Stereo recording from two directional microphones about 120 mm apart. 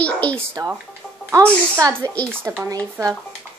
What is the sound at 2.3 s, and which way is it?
Speech, 20° right (ahead or behind).